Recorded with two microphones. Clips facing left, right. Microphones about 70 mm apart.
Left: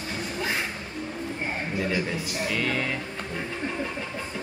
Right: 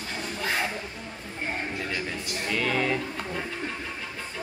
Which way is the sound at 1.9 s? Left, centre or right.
Centre.